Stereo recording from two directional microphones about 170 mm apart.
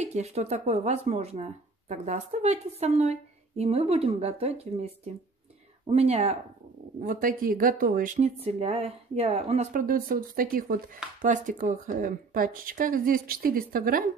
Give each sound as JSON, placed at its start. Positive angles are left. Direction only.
{"t": 0.0, "sound": "speech", "side_deg": -40}
{"t": 7.0, "sound": "speech", "side_deg": -55}